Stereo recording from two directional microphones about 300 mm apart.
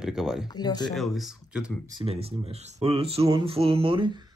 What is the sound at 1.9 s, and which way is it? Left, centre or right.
Speech, centre.